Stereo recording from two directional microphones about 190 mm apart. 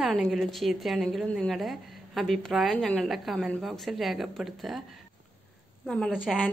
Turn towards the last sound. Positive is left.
turn(degrees=0)  # may be behind; listen again after turning